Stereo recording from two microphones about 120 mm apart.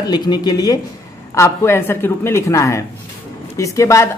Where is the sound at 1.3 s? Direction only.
20° left (ahead or behind).